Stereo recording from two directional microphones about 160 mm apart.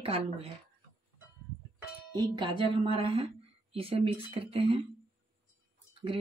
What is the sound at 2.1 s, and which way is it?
Speech, 30° right (ahead or behind).